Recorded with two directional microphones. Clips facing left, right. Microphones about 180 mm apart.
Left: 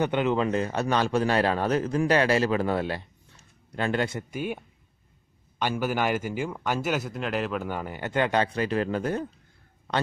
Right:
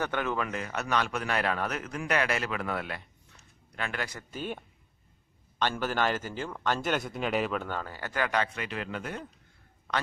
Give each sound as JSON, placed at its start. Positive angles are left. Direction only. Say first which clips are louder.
{"t": 0.0, "sound": "a man's voice", "louder": "left 7 dB", "side_deg": 20}
{"t": 4.3, "sound": "speech", "louder": "left 5 dB", "side_deg": 10}
{"t": 7.6, "sound": "a man's voice", "louder": "left 4 dB", "side_deg": 15}